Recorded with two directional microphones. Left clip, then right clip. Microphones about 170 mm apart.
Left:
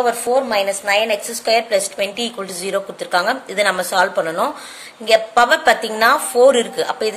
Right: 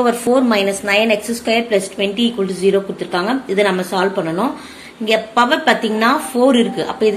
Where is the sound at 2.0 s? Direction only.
45° left (ahead or behind).